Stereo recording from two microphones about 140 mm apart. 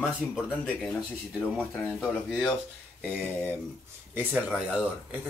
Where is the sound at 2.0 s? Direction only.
5° right (ahead or behind).